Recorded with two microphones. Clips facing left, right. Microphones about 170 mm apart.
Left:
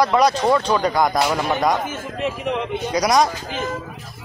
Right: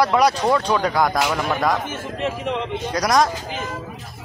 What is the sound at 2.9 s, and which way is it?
Speech, centre (ahead or behind).